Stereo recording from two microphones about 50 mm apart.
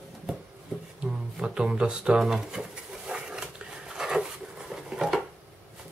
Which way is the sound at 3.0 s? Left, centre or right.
Centre.